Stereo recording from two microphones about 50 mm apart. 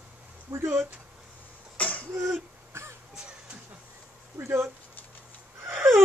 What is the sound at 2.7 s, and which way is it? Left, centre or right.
Throat clearing, right.